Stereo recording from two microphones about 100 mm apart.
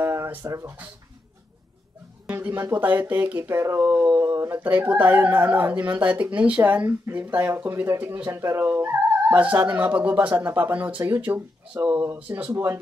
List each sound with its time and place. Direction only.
0.0 s a sound: 30° right (ahead or behind)
0.5 s speech: 30° right (ahead or behind)
2.3 s speech: 20° right (ahead or behind)
4.6 s speech: 15° right (ahead or behind)